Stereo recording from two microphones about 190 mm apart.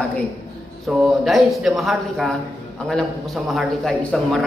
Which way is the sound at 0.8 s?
Centre (ahead or behind).